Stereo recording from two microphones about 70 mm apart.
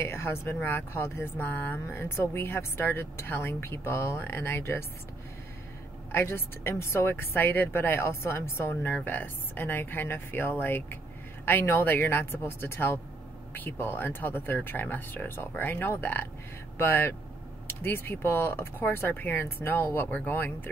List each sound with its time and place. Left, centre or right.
0.0 s speech: left
6.1 s speech: left